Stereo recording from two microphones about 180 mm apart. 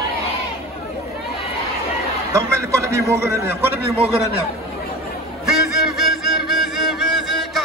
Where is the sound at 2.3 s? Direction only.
15° right (ahead or behind).